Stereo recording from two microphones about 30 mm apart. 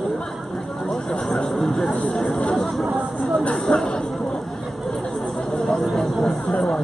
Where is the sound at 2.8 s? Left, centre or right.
Centre.